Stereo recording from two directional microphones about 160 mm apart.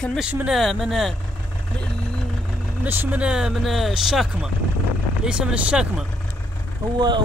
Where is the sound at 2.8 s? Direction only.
10° right (ahead or behind).